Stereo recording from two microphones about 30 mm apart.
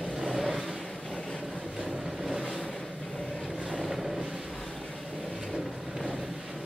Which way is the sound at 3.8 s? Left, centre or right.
Centre.